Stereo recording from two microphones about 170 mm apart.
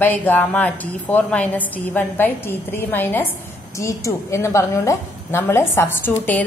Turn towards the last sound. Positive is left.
turn(degrees=10)  # may be behind; listen again after turning